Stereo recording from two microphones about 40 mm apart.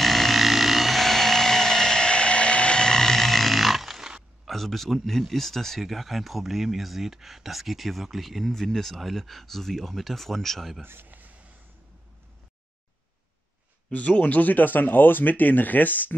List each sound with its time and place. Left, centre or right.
0.0 s dental drill: centre
4.5 s speech: centre
10.8 s a sound: right
13.9 s speech: left
14.4 s speech: left